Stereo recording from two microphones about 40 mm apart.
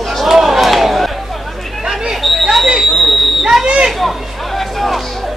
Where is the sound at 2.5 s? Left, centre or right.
Centre.